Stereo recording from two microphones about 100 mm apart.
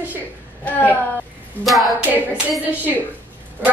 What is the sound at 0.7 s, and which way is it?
Speech, 15° left (ahead or behind).